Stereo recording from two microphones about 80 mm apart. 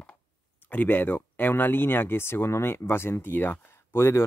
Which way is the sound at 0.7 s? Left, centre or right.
Left.